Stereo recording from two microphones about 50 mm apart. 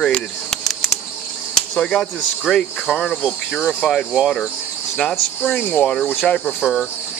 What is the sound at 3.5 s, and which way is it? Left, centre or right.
Speech, centre.